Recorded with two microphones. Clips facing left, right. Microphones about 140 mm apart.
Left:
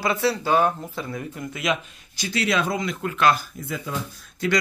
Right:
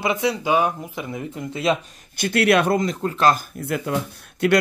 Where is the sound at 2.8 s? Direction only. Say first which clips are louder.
Right 2 dB; 35° right (ahead or behind).